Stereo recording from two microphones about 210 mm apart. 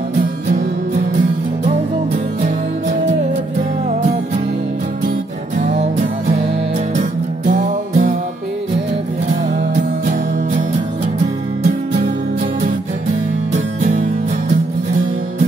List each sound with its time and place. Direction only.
0.5 s music: 40° right (ahead or behind)
5.6 s music: 35° right (ahead or behind)
11.6 s music: 40° right (ahead or behind)